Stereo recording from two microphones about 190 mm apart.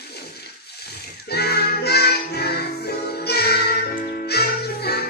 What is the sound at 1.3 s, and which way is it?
Music, 60° left (ahead or behind).